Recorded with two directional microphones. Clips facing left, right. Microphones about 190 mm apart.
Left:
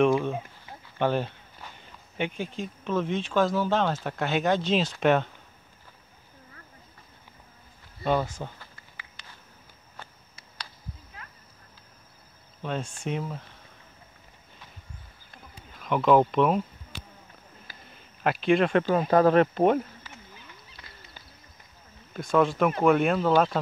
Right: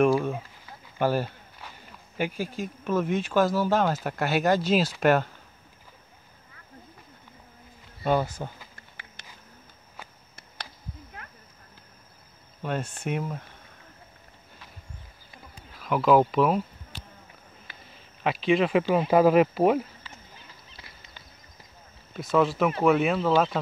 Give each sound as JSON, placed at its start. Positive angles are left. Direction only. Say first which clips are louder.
{"t": 0.0, "sound": "speech", "louder": "even", "side_deg": -5}
{"t": 8.0, "sound": "speech", "louder": "right 1 dB", "side_deg": -5}
{"t": 11.2, "sound": "a sound", "louder": "right 2 dB", "side_deg": -55}
{"t": 12.6, "sound": "speech", "louder": "right 1 dB", "side_deg": -5}
{"t": 15.3, "sound": "insect", "louder": "even", "side_deg": -5}
{"t": 17.8, "sound": "speech", "louder": "left 1 dB", "side_deg": 0}
{"t": 20.8, "sound": "a sound", "louder": "right 3 dB", "side_deg": -25}
{"t": 22.1, "sound": "speech", "louder": "even", "side_deg": -5}